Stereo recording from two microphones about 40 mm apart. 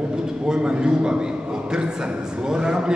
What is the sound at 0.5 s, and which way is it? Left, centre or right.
Speech, right.